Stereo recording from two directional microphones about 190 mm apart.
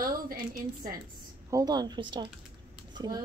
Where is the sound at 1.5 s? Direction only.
20° right (ahead or behind).